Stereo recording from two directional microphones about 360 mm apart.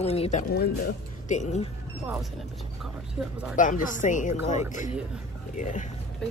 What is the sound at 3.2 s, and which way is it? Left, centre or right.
Speech, centre.